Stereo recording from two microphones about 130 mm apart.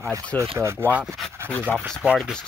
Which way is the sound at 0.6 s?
20° right (ahead or behind).